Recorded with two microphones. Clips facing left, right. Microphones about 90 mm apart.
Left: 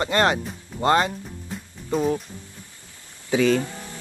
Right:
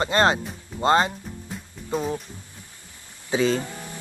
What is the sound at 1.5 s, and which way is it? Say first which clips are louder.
Music: left 2 dB; centre (ahead or behind).